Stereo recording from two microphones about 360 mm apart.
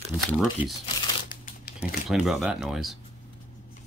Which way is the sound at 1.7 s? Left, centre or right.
Centre.